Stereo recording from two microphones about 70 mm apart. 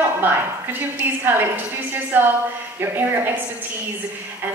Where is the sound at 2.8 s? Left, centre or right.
Right.